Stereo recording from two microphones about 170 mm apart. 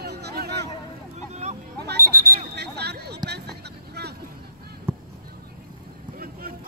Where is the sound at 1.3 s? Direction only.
40° right (ahead or behind).